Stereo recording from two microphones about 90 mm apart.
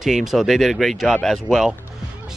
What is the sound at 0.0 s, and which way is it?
Speech, 5° right (ahead or behind).